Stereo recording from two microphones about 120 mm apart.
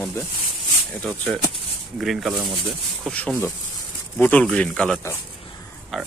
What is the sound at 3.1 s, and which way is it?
A man's voice, 10° left (ahead or behind).